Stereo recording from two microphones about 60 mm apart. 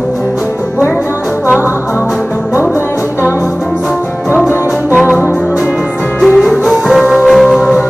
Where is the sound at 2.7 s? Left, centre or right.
Left.